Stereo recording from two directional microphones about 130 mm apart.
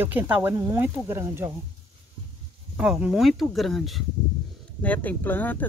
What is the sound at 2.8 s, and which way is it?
Speech, 10° right (ahead or behind).